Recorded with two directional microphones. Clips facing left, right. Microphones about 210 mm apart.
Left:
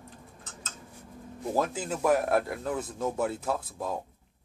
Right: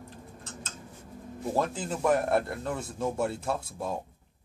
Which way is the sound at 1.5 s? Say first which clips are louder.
Left 1 dB; 5° left (ahead or behind).